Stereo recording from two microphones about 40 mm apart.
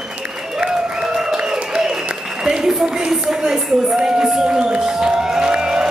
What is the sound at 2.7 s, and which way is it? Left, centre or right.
Speech, centre.